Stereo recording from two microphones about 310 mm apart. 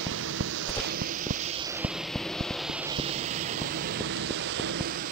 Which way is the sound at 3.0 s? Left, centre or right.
Centre.